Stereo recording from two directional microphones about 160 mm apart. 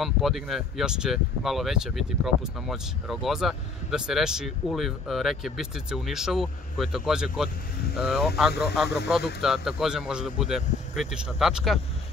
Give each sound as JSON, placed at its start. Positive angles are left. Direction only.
{"t": 0.0, "sound": "speech", "side_deg": 0}
{"t": 8.8, "sound": "speech", "side_deg": 90}
{"t": 9.4, "sound": "speech", "side_deg": 0}